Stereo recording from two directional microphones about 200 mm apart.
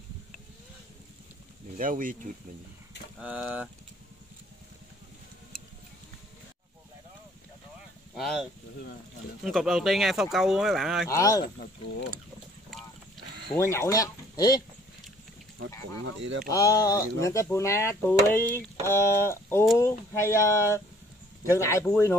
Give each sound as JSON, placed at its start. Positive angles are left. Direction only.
{"t": 1.8, "sound": "speech", "side_deg": -40}
{"t": 3.2, "sound": "speech", "side_deg": -5}
{"t": 8.1, "sound": "speech", "side_deg": 0}
{"t": 11.1, "sound": "speech", "side_deg": 15}
{"t": 11.4, "sound": "speech", "side_deg": 50}
{"t": 13.6, "sound": "speech", "side_deg": 15}
{"t": 16.4, "sound": "speech", "side_deg": 15}